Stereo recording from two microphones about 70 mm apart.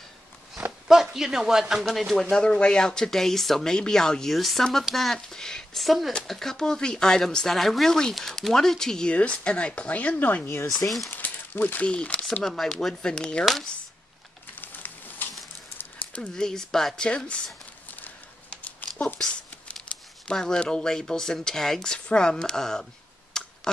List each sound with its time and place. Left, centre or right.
0.8 s a man's voice: centre
14.5 s crumpling: left
16.1 s speech: centre
17.9 s a sound: left
19.9 s a sound: centre
20.2 s speech: centre
23.3 s tick: centre